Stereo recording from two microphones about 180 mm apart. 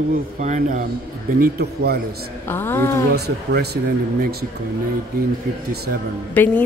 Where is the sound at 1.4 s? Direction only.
60° right (ahead or behind).